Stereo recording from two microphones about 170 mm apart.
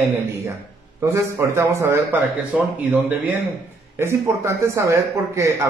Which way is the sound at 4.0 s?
15° right (ahead or behind).